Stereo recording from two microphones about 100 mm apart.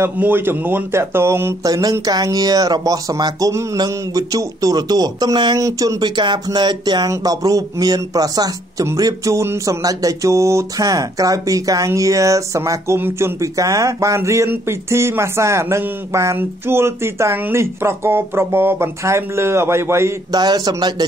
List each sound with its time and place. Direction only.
0.0 s speech: 20° right (ahead or behind); by 5.6 s 45° right (ahead or behind)
5.6 s speech: 35° right (ahead or behind)
8.8 s a sound: 35° right (ahead or behind)
20.2 s speech: 45° right (ahead or behind)